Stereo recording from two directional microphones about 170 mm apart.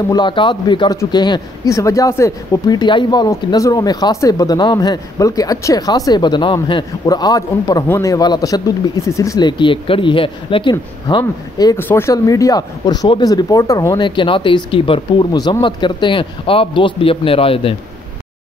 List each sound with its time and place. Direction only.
0.1 s a man's voice: 30° left (ahead or behind)